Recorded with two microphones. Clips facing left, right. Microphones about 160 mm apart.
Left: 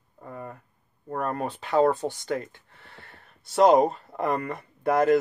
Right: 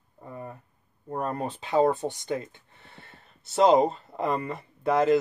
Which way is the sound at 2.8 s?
20° right (ahead or behind).